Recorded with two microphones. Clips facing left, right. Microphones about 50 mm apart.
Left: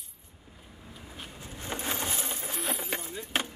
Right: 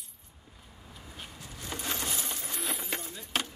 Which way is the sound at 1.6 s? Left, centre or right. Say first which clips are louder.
Left 2 dB; left.